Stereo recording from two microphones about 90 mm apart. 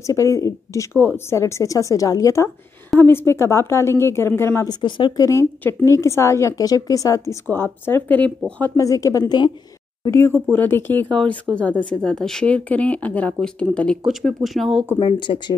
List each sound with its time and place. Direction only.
0.0 s a woman's voice: 35° left (ahead or behind)
0.9 s a woman's voice: 25° left (ahead or behind)
4.6 s speech: 60° left (ahead or behind)
5.2 s a woman's voice: 30° left (ahead or behind)
7.4 s speech: 25° left (ahead or behind)
8.7 s a woman's voice: 35° left (ahead or behind)
10.5 s speech: 20° left (ahead or behind)
11.5 s speech: 25° right (ahead or behind)
11.8 s speech: 10° left (ahead or behind)
14.0 s speech: centre (ahead or behind)
15.0 s speech: 60° left (ahead or behind)